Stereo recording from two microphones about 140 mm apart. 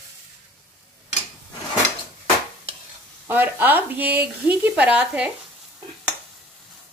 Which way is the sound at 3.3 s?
15° right (ahead or behind).